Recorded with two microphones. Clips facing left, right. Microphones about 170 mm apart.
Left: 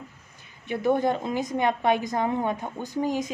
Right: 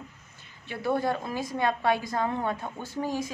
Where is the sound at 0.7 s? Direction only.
20° left (ahead or behind).